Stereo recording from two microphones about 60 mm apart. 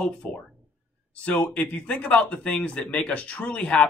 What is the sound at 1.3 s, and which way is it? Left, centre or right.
Speech, left.